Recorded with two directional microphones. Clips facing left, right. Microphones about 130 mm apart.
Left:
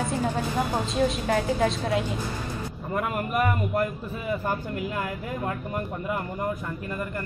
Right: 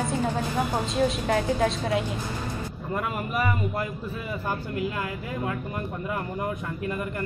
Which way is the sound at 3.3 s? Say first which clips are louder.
Left 3 dB; 50° left (ahead or behind).